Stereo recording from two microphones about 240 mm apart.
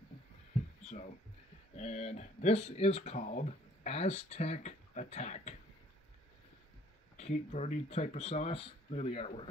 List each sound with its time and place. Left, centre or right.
1.8 s speech: left
7.2 s speech: left